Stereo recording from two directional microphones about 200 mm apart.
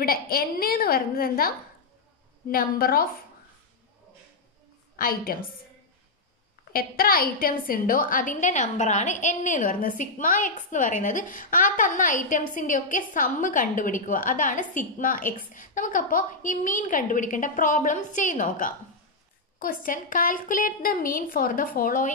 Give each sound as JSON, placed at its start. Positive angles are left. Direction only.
{"t": 0.0, "sound": "a woman's voice", "side_deg": 45}
{"t": 2.5, "sound": "a woman's voice", "side_deg": 45}
{"t": 4.9, "sound": "a woman's voice", "side_deg": 45}
{"t": 6.7, "sound": "a woman's voice", "side_deg": 45}